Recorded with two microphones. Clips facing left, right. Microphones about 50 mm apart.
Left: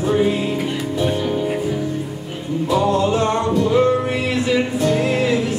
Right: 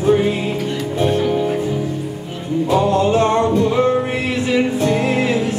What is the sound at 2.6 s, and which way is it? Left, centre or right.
Music, right.